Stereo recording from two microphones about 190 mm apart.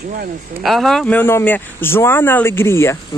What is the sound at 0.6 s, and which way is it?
Speech, centre (ahead or behind).